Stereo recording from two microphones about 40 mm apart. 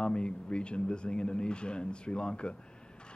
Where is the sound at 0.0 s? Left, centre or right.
Left.